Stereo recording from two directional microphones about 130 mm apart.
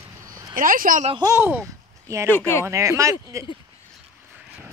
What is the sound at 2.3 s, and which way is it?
Speech, 20° left (ahead or behind).